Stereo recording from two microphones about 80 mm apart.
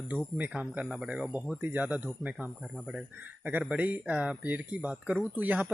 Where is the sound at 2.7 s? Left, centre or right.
Centre.